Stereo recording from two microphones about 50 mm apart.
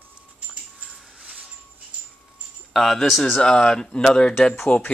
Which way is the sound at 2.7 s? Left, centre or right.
Centre.